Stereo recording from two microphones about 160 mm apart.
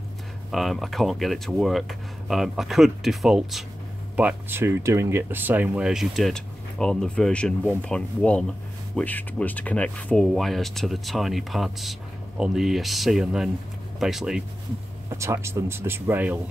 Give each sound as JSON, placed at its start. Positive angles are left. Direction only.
{"t": 0.5, "sound": "speech", "side_deg": 0}
{"t": 15.0, "sound": "speech", "side_deg": -20}